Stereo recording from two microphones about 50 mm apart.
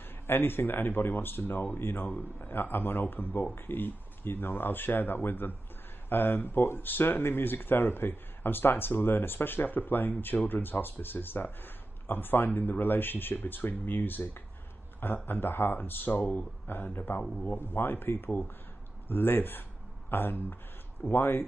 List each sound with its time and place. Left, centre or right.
0.3 s speech: left
6.9 s speech: left